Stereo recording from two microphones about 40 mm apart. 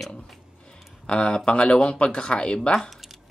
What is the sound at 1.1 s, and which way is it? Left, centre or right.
Speech, left.